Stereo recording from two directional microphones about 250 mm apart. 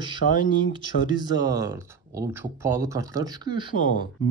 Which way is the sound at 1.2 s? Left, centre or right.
Centre.